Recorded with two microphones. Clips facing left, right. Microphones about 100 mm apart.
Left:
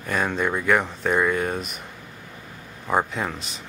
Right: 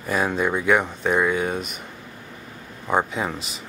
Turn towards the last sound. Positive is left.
turn(degrees=-5)  # may be behind; listen again after turning